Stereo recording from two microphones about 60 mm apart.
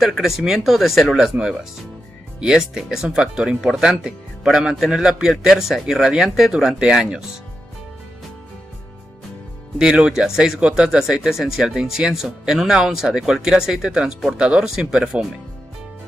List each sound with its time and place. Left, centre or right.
0.0 s speech: centre
2.4 s speech: centre
9.9 s speech: centre